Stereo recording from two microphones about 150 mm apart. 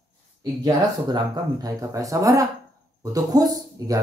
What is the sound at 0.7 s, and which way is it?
Speech, 25° right (ahead or behind).